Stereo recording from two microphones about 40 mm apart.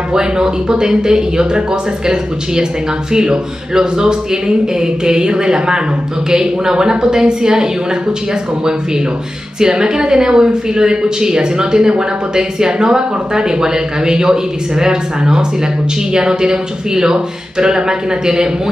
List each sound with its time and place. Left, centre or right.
0.1 s speech: centre
9.6 s a woman's voice: centre